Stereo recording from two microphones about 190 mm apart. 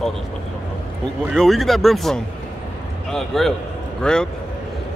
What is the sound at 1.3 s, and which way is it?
Speech, centre (ahead or behind).